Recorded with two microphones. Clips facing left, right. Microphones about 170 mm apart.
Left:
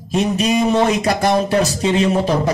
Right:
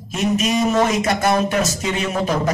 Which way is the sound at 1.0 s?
35° left (ahead or behind).